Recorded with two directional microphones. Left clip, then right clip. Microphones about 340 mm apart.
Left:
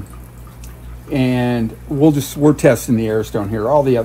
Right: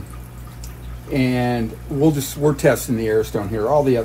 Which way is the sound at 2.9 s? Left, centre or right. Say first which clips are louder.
Left 1 dB; centre.